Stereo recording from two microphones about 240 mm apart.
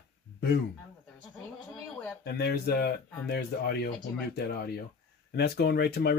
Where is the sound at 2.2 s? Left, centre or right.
Left.